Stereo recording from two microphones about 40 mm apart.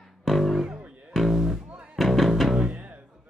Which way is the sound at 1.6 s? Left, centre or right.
Right.